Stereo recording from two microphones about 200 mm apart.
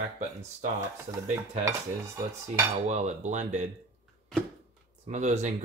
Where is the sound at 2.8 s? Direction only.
35° right (ahead or behind).